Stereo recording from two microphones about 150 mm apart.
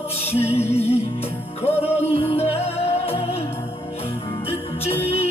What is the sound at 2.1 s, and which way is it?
Music, 40° left (ahead or behind).